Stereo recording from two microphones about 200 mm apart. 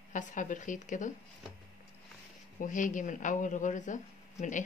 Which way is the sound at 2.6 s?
40° left (ahead or behind).